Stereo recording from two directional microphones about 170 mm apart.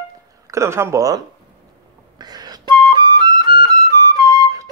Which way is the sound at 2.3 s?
25° right (ahead or behind).